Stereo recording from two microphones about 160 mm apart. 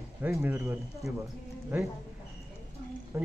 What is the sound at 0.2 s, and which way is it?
Speech, 10° right (ahead or behind).